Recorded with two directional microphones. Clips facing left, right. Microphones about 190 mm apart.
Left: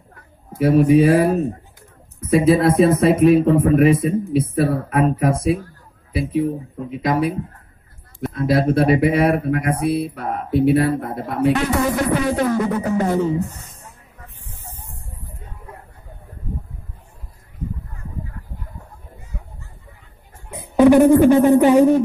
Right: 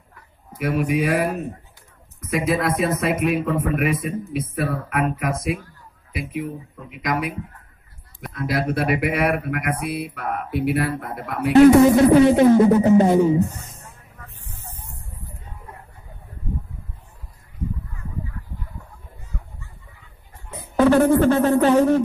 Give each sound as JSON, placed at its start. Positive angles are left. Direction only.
{"t": 0.5, "sound": "speech", "side_deg": 30}
{"t": 11.8, "sound": "music", "side_deg": -25}
{"t": 20.5, "sound": "speech", "side_deg": 15}